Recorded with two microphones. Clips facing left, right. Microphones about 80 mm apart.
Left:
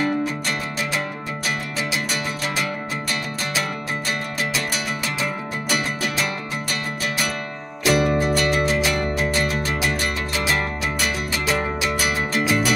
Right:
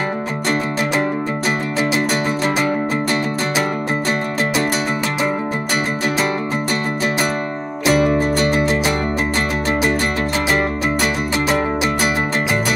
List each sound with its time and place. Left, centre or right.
7.8 s music: right